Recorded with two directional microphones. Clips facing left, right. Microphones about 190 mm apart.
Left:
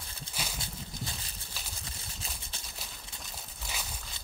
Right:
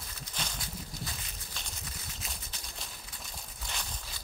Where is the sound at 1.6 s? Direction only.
5° left (ahead or behind).